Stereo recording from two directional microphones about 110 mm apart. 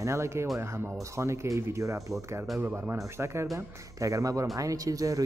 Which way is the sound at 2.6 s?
15° right (ahead or behind).